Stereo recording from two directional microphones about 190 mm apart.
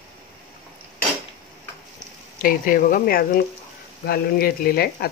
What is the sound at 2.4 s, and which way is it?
Speech, 45° left (ahead or behind).